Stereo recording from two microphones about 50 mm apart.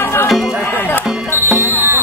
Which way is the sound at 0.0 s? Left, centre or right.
Left.